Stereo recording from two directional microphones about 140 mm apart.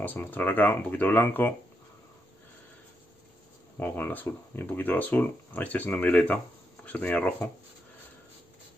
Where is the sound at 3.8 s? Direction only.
15° left (ahead or behind).